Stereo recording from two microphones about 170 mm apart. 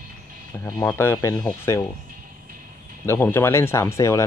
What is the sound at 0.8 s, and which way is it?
Speech, 15° left (ahead or behind).